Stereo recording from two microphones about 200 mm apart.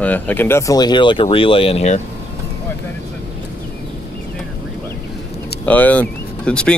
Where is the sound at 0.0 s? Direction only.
10° left (ahead or behind); by 2.0 s 30° left (ahead or behind).